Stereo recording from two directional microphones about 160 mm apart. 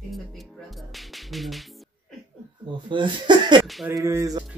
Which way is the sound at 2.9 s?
30° right (ahead or behind).